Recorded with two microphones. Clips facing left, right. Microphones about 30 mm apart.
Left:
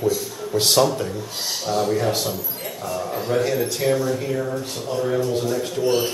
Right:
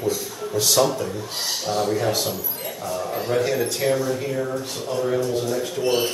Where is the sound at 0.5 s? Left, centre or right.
Left.